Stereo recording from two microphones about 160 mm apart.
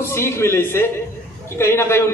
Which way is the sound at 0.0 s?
15° left (ahead or behind).